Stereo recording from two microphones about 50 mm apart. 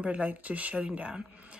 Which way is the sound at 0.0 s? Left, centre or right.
Right.